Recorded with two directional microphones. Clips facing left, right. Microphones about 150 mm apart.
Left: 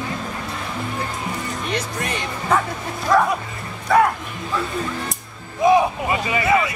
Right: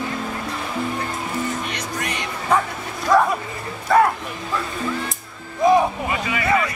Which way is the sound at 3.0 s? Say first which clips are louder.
Right 1 dB; centre (ahead or behind).